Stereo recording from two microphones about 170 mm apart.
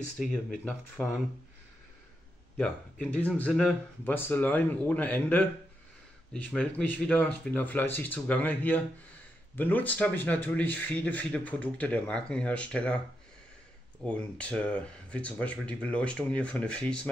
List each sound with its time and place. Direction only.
0.2 s speech: 5° right (ahead or behind)
1.0 s speech: 10° left (ahead or behind)
2.5 s speech: 5° left (ahead or behind)
14.0 s speech: 5° left (ahead or behind)